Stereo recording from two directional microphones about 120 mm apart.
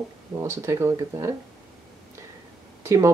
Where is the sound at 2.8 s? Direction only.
25° right (ahead or behind).